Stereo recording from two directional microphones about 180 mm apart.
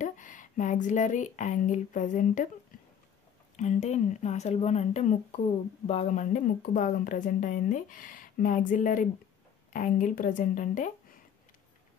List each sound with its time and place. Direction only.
0.0 s speech: 45° left (ahead or behind)
3.5 s speech: 40° left (ahead or behind)